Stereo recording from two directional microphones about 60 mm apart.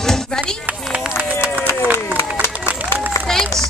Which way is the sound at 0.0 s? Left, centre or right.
Centre.